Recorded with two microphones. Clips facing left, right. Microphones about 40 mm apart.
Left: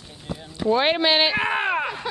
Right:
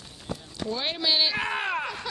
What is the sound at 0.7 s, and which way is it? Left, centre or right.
Speech, left.